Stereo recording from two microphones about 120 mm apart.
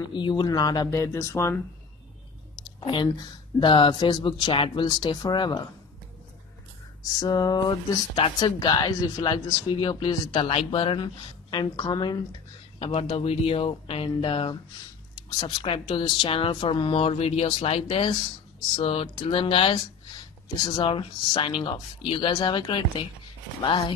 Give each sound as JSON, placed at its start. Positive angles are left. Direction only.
{"t": 0.1, "sound": "speech", "side_deg": 40}
{"t": 2.5, "sound": "speech", "side_deg": 40}
{"t": 7.2, "sound": "speech", "side_deg": 35}
{"t": 12.7, "sound": "speech", "side_deg": 50}
{"t": 19.7, "sound": "speech", "side_deg": 35}